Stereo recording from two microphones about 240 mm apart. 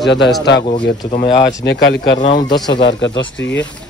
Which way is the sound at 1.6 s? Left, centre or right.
Left.